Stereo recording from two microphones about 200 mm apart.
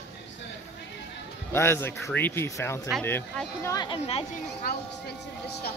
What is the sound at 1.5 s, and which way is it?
Speech, 10° left (ahead or behind).